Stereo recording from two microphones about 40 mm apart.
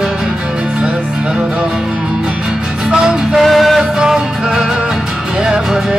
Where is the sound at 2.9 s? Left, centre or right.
Right.